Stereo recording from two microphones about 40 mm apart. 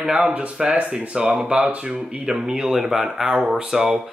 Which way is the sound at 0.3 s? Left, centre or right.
Right.